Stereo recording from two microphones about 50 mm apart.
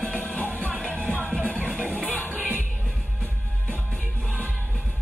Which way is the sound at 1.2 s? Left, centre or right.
Right.